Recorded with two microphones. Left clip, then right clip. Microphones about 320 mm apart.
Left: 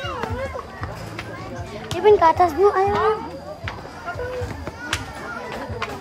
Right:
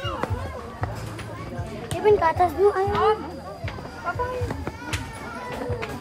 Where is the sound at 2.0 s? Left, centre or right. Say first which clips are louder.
Left 5 dB; left.